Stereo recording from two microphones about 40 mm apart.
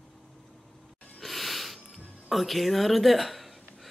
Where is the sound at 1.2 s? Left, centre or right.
Centre.